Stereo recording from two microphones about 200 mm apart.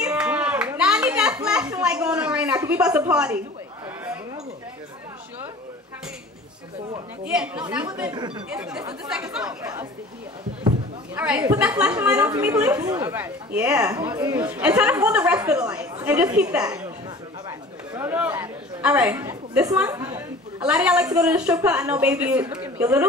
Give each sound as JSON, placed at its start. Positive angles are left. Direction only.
{"t": 0.0, "sound": "a sound", "side_deg": -5}
{"t": 2.5, "sound": "speech", "side_deg": -15}
{"t": 3.1, "sound": "a man's voice", "side_deg": -5}
{"t": 7.2, "sound": "a man's voice", "side_deg": -5}
{"t": 8.1, "sound": "speech", "side_deg": -20}
{"t": 8.5, "sound": "a man's voice", "side_deg": -5}
{"t": 11.1, "sound": "a woman's voice", "side_deg": -10}
{"t": 13.0, "sound": "a man's voice", "side_deg": -10}
{"t": 14.1, "sound": "speech", "side_deg": -20}
{"t": 14.4, "sound": "a woman's voice", "side_deg": -5}
{"t": 17.5, "sound": "chatter", "side_deg": -10}
{"t": 21.2, "sound": "a man's voice", "side_deg": -5}